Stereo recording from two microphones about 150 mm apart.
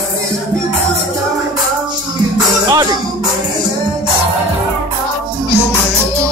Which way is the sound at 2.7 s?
25° right (ahead or behind).